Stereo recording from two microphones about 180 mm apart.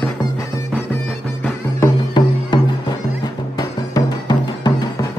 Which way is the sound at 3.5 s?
25° left (ahead or behind).